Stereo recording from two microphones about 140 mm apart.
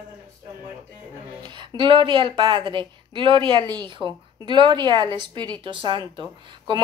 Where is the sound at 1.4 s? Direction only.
35° right (ahead or behind).